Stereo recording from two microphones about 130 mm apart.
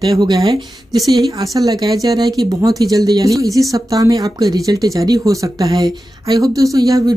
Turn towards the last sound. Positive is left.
turn(degrees=-30)  # may be behind; listen again after turning